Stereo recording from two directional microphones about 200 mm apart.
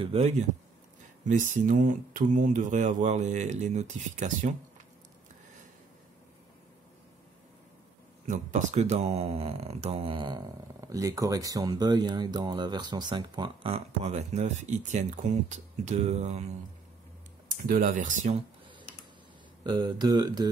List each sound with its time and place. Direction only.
0.0 s speech: 35° right (ahead or behind)
8.3 s speech: 35° right (ahead or behind)
17.5 s speech: 45° right (ahead or behind)
19.6 s speech: 20° right (ahead or behind)